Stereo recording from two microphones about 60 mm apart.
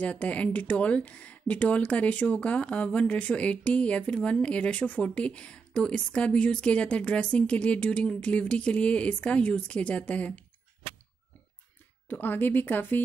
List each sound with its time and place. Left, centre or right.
0.0 s speech: left
12.1 s speech: left